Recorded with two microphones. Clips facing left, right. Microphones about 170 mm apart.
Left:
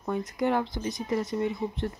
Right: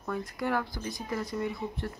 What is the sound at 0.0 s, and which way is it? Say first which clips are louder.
Speech: left 5 dB; 20° left (ahead or behind).